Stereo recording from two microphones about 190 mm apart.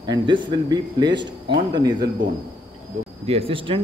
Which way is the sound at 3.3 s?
30° right (ahead or behind).